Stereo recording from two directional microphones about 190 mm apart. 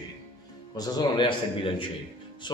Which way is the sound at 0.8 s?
25° left (ahead or behind).